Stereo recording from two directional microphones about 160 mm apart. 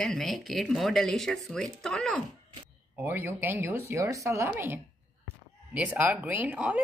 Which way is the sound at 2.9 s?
15° right (ahead or behind).